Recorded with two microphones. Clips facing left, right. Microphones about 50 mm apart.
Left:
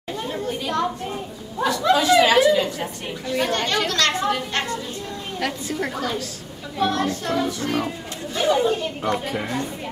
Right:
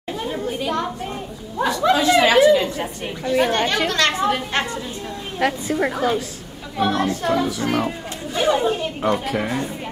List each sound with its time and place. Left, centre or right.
0.1 s chatter: centre
1.6 s a woman's voice: centre